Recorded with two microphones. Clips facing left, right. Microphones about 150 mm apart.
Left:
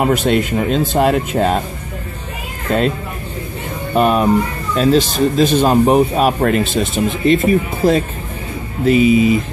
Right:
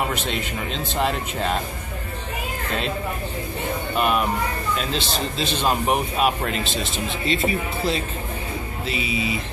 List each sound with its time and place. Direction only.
0.0 s speech: 50° left (ahead or behind)
2.7 s speech: 40° left (ahead or behind)
3.9 s speech: 35° left (ahead or behind)